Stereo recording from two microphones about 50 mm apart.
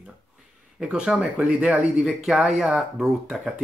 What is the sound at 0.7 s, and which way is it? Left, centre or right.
Speech, centre.